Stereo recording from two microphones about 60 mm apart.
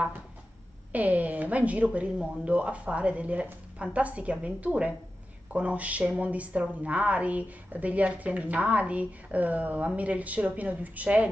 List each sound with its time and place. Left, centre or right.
0.9 s a woman's voice: right